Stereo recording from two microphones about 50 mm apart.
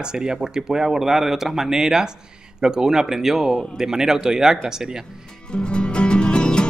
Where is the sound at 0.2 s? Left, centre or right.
Centre.